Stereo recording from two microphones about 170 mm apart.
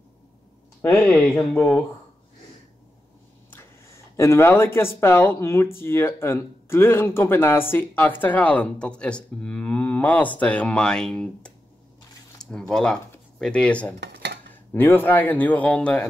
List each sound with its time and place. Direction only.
0.8 s speech: 10° left (ahead or behind)
3.4 s a sound: 15° left (ahead or behind)
4.7 s speech: 15° left (ahead or behind)
13.9 s dishes: 90° right
14.7 s speech: 10° left (ahead or behind)